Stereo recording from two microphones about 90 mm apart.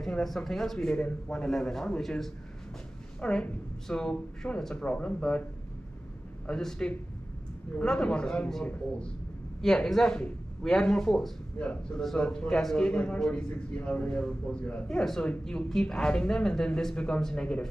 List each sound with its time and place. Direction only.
0.0 s a man's voice: 5° left (ahead or behind)
6.4 s a man's voice: 10° left (ahead or behind)
11.5 s a man's voice: 15° left (ahead or behind)